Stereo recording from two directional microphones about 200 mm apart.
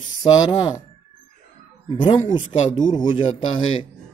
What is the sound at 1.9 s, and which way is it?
A man's voice, 25° left (ahead or behind).